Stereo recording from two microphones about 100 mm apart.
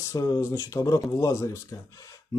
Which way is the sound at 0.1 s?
35° left (ahead or behind).